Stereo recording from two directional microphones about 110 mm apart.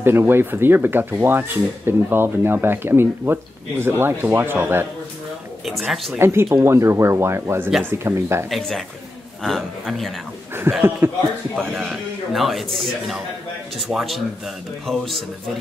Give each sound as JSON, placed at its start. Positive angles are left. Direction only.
{"t": 0.0, "sound": "speech", "side_deg": -20}
{"t": 5.7, "sound": "a man's voice", "side_deg": 0}
{"t": 6.1, "sound": "speech", "side_deg": -25}
{"t": 8.5, "sound": "a man's voice", "side_deg": 5}
{"t": 10.7, "sound": "speech", "side_deg": -20}
{"t": 11.5, "sound": "a man's voice", "side_deg": -10}